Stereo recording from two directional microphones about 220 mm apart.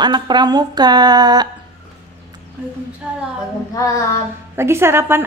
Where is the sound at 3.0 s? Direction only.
5° right (ahead or behind).